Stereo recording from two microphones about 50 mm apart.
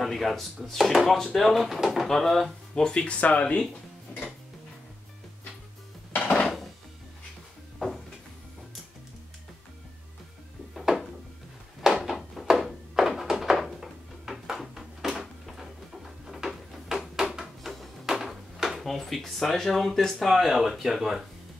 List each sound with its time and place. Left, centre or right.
0.0 s speech: centre
2.7 s speech: centre
3.2 s speech: left
6.1 s dishes: left
10.7 s a sound: centre
18.0 s drawer open or close: centre